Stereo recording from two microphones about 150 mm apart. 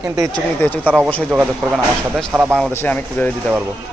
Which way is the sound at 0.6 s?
15° left (ahead or behind).